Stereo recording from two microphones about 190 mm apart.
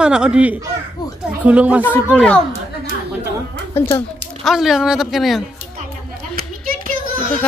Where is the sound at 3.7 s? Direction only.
10° left (ahead or behind).